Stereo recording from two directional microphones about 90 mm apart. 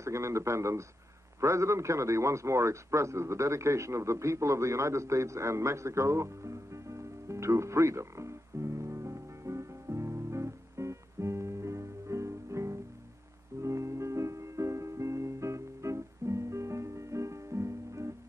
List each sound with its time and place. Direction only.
0.0 s a man's voice: 30° right (ahead or behind)
1.4 s a sound: 35° right (ahead or behind)
13.6 s music: 35° right (ahead or behind)